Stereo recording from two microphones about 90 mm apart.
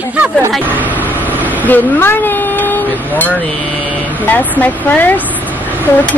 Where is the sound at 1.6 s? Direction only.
20° left (ahead or behind).